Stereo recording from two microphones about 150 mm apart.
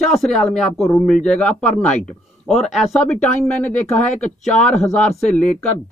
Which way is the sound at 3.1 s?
55° left (ahead or behind).